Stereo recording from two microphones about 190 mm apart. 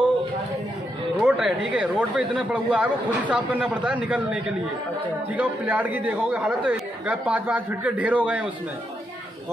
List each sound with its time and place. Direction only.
1.2 s speech: 5° right (ahead or behind)